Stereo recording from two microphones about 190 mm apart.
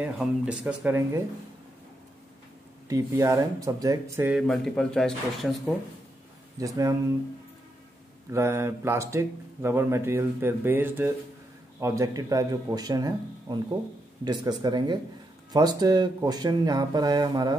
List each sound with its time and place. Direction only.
0.0 s speech: 5° right (ahead or behind)
2.9 s speech: 15° right (ahead or behind); by 5.8 s centre (ahead or behind)
6.6 s speech: 15° right (ahead or behind)
8.3 s speech: 15° right (ahead or behind)